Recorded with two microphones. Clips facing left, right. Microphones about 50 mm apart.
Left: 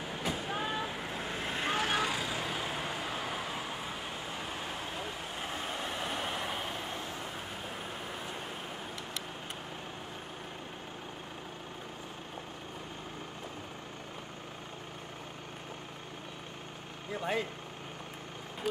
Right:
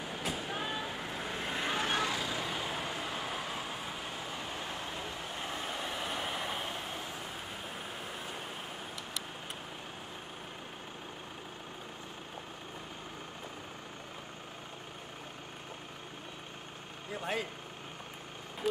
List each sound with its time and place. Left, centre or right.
0.0 s vehicle: centre
2.1 s vehicle: left
2.4 s vehicle: centre
17.1 s speech: centre